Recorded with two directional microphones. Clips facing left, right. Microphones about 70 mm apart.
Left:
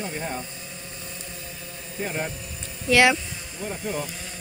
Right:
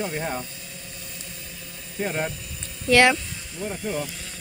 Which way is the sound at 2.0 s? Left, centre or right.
Centre.